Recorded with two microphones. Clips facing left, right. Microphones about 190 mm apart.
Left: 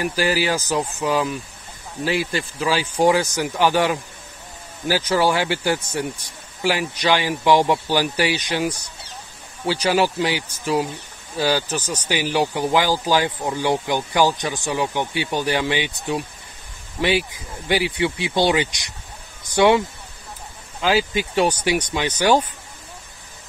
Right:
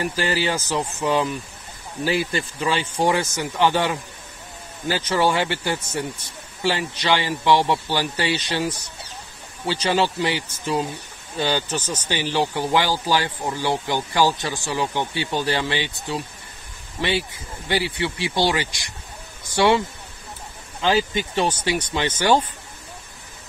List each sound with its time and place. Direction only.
0.4 s speech: 10° left (ahead or behind)
3.0 s speech: 15° left (ahead or behind)
20.8 s speech: 5° left (ahead or behind)